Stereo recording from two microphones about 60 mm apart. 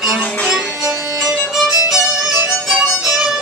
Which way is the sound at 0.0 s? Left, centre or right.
Centre.